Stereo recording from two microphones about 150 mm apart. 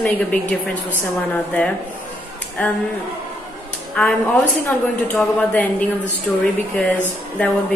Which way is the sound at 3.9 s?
10° left (ahead or behind).